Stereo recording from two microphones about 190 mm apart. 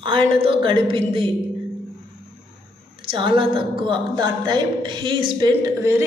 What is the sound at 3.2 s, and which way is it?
A woman's voice, 25° right (ahead or behind).